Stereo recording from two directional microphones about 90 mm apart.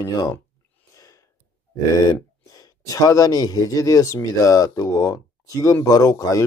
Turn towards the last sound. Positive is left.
turn(degrees=40)  # may be behind; listen again after turning